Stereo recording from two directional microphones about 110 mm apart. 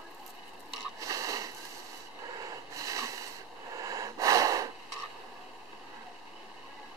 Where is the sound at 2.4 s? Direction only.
30° right (ahead or behind).